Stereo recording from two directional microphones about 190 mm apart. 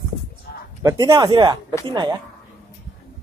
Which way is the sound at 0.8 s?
15° right (ahead or behind).